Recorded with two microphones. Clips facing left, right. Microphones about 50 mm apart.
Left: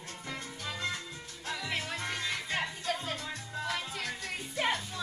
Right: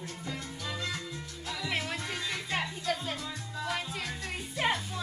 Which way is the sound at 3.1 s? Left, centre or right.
Left.